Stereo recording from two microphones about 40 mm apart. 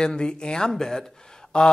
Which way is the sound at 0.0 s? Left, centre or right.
Left.